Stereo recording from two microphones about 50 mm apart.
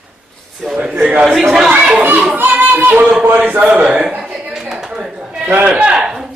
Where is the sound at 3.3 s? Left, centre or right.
Right.